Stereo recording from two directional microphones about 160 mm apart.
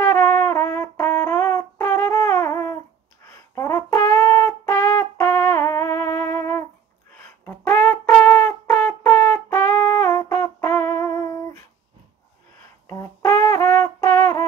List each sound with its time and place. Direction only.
0.0 s brass instrument: 15° left (ahead or behind)
7.8 s music: 10° left (ahead or behind)
12.8 s brass instrument: 15° left (ahead or behind)